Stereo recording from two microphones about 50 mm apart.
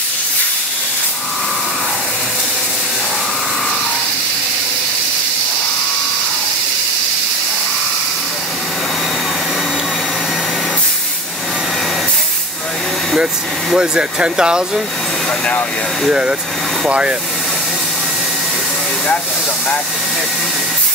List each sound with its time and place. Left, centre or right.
13.7 s speech: centre
16.1 s speech: centre